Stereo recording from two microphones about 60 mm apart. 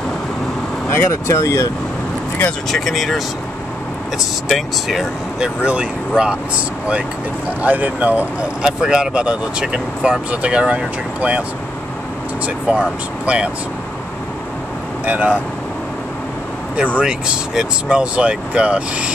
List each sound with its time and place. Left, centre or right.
1.1 s speech: left
2.7 s speech: centre
4.5 s speech: centre
5.4 s speech: centre
7.6 s speech: right
8.6 s speech: centre
12.6 s speech: centre
15.0 s speech: right
17.0 s speech: centre